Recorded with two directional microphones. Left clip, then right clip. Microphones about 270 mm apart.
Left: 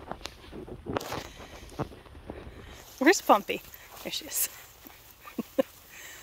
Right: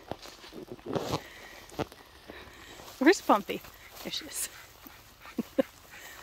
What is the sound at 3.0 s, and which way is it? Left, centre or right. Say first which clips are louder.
Speech: left 2 dB; centre.